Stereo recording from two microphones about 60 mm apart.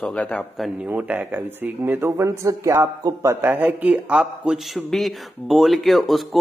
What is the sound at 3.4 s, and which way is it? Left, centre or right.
Speech, right.